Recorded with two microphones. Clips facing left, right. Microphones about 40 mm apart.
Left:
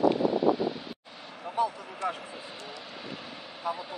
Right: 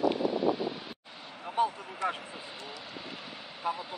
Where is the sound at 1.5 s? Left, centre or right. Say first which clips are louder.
Even; right.